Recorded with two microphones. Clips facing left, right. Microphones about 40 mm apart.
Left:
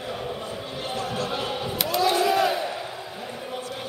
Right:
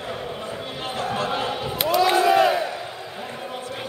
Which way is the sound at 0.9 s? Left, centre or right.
Right.